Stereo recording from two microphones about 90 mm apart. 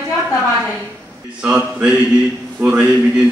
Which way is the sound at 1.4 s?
10° right (ahead or behind).